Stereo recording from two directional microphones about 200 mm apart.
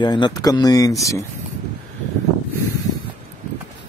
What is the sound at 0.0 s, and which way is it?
Speech, 20° left (ahead or behind).